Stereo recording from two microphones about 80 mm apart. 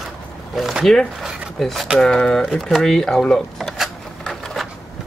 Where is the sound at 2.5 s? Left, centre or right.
Centre.